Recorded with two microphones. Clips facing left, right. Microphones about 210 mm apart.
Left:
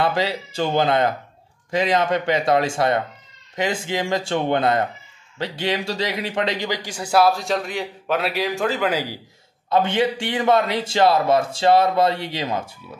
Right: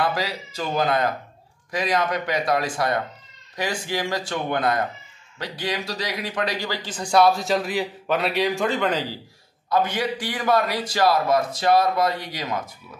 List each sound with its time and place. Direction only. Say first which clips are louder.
0.0 s a man's voice: left 4 dB; 25° left (ahead or behind); by 9.2 s 5° left (ahead or behind)
9.7 s a man's voice: left 4 dB; 25° left (ahead or behind)